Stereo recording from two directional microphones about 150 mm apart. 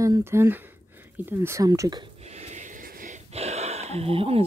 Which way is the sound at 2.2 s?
45° right (ahead or behind).